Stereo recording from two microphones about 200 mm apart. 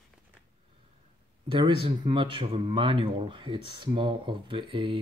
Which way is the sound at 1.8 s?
25° right (ahead or behind).